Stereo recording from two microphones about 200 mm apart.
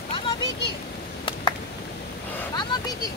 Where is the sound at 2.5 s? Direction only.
20° left (ahead or behind).